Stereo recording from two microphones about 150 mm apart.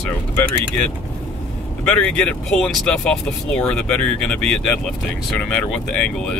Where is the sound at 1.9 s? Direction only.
5° left (ahead or behind).